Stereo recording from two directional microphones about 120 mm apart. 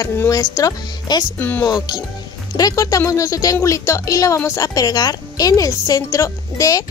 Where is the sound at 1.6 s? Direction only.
35° left (ahead or behind).